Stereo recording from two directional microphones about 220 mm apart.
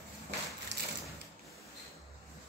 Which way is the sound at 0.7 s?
55° right (ahead or behind).